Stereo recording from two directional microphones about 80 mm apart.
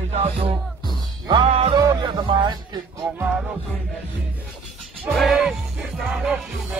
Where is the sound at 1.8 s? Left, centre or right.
Right.